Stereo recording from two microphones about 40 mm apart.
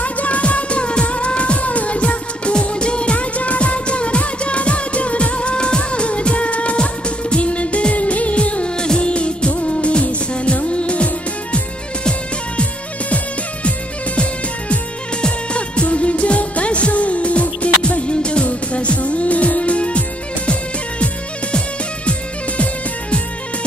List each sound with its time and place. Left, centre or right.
0.0 s music: left
8.8 s music of bollywood: left
11.5 s music: left
15.2 s music: left